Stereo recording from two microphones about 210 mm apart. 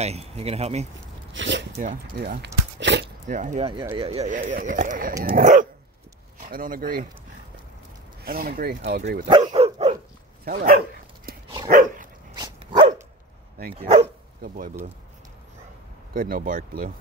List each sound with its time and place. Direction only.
0.0 s speech: 30° right (ahead or behind)
1.3 s speech: 60° right (ahead or behind)
1.7 s speech: 35° right (ahead or behind); by 3.1 s 55° right (ahead or behind)
3.3 s speech: 35° right (ahead or behind)
8.2 s speech: 45° right (ahead or behind)
9.4 s dog: 30° right (ahead or behind)
10.4 s speech: 40° right (ahead or behind)
11.3 s dog: 45° right (ahead or behind)
12.4 s dog: 25° right (ahead or behind)
13.7 s speech: 30° right (ahead or behind)
14.4 s speech: 40° right (ahead or behind)
16.1 s speech: 45° right (ahead or behind)